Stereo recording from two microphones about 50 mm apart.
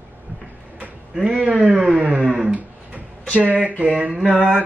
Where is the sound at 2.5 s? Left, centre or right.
Right.